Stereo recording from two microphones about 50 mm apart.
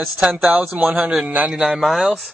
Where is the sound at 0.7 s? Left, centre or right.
Right.